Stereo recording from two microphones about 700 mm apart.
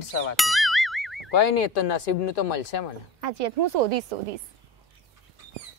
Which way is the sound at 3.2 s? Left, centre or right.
Right.